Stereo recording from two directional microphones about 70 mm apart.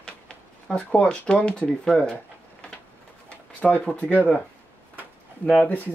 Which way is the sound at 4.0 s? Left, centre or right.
Left.